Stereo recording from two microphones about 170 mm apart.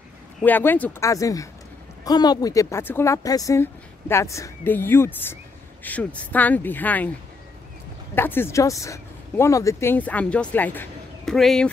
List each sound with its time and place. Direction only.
0.4 s speech: 10° left (ahead or behind)
8.1 s speech: 10° left (ahead or behind)